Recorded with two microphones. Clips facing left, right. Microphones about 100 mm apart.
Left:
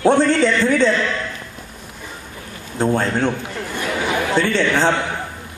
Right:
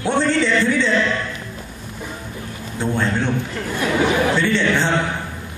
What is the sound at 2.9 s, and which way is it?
Speech, 45° left (ahead or behind).